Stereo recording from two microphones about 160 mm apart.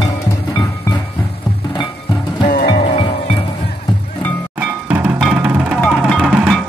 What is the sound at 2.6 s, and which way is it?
Music, 35° left (ahead or behind).